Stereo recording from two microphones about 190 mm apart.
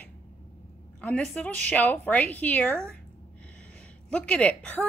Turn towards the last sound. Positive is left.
turn(degrees=5)  # may be behind; listen again after turning